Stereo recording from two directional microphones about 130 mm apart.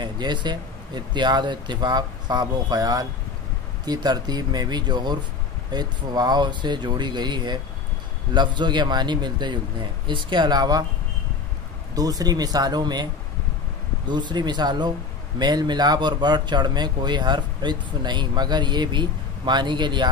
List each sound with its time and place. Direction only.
0.0 s speech: 35° right (ahead or behind)
11.9 s speech: 30° right (ahead or behind)